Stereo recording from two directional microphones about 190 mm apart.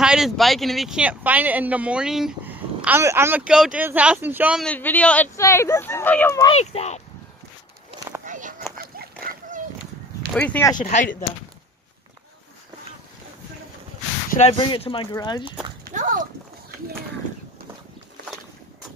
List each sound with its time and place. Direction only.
0.0 s speech: 5° right (ahead or behind)
4.6 s speech: 10° left (ahead or behind)
6.5 s speech: 35° left (ahead or behind)
8.3 s a sound: 45° right (ahead or behind)
8.7 s horse: 55° right (ahead or behind)
9.2 s a sound: 50° right (ahead or behind)
10.3 s speech: 5° left (ahead or behind)
10.8 s speech: 40° left (ahead or behind)
14.4 s speech: 30° left (ahead or behind)
15.8 s a child's voice: 40° right (ahead or behind)